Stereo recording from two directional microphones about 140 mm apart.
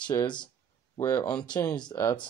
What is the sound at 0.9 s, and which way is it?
Speech, 20° left (ahead or behind).